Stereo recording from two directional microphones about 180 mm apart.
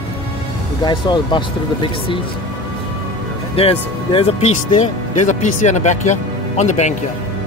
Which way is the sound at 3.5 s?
30° left (ahead or behind).